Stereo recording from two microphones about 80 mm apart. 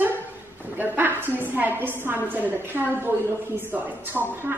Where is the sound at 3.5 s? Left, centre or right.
Right.